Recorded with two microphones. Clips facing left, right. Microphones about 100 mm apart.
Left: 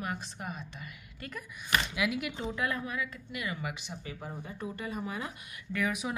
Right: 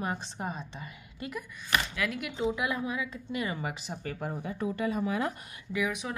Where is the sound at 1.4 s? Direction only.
15° left (ahead or behind).